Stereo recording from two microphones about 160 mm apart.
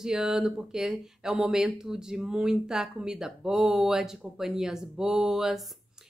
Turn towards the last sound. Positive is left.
turn(degrees=0)  # may be behind; listen again after turning